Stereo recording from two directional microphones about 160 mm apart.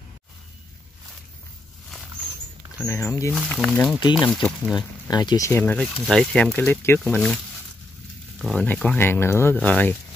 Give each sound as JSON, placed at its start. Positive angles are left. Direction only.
{"t": 2.8, "sound": "speech", "side_deg": 15}
{"t": 3.3, "sound": "speech", "side_deg": 0}
{"t": 5.1, "sound": "speech", "side_deg": 25}
{"t": 7.0, "sound": "speech", "side_deg": 5}
{"t": 8.4, "sound": "speech", "side_deg": 0}
{"t": 8.6, "sound": "speech", "side_deg": 10}